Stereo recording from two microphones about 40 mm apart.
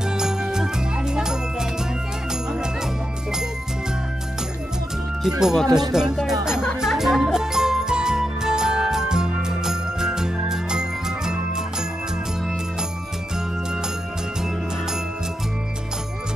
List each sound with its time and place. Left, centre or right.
0.0 s music: centre
5.2 s speech: centre
6.8 s music: centre